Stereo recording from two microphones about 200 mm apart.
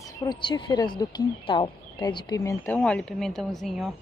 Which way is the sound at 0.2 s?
20° left (ahead or behind).